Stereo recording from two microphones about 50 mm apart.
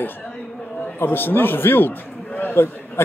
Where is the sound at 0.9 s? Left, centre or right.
Left.